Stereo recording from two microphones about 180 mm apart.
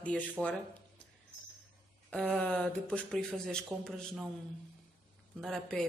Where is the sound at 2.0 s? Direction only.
5° left (ahead or behind).